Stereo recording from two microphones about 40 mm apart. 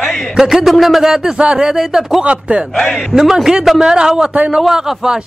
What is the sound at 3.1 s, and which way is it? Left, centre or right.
A man's voice, centre.